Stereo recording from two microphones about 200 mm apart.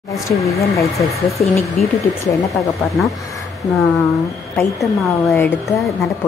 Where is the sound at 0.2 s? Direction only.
15° left (ahead or behind).